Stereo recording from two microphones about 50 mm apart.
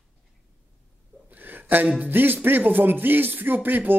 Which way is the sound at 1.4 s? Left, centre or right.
Right.